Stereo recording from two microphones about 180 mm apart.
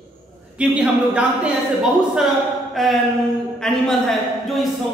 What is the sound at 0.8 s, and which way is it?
A man's voice, 5° right (ahead or behind).